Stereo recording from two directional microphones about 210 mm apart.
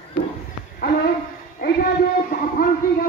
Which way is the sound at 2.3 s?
45° left (ahead or behind).